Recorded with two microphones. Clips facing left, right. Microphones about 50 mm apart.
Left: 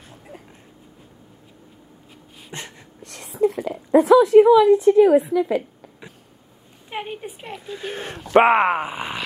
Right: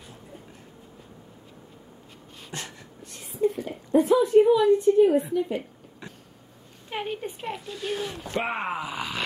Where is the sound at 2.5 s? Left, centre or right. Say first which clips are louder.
Left 2 dB; left.